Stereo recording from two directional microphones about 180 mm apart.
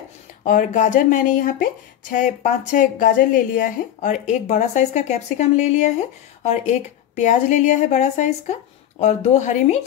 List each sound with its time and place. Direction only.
0.4 s speech: 45° left (ahead or behind)